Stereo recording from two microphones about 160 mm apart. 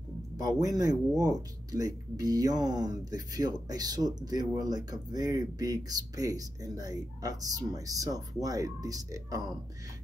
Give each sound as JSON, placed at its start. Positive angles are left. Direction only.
{"t": 0.4, "sound": "speech", "side_deg": -20}